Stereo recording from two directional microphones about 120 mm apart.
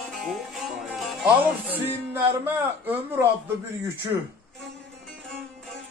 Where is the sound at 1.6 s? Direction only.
15° right (ahead or behind).